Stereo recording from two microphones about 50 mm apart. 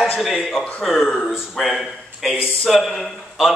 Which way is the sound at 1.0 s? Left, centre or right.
Centre.